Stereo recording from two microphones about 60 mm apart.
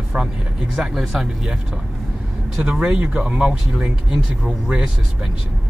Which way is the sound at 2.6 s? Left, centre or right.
Centre.